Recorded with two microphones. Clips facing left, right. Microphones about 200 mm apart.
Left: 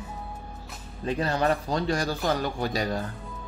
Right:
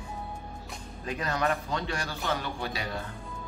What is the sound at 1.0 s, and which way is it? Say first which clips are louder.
Speech: left 5 dB; 30° left (ahead or behind).